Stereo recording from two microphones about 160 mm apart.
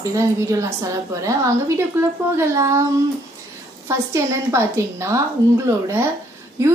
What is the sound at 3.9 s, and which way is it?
A woman's voice, 15° right (ahead or behind).